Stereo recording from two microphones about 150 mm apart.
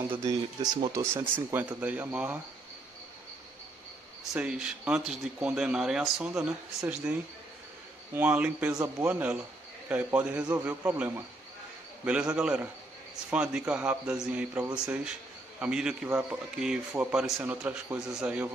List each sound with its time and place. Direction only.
0.1 s speech: 20° right (ahead or behind)
4.4 s speech: 5° right (ahead or behind)